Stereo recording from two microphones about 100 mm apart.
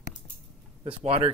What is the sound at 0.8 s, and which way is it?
Speech, 70° right (ahead or behind).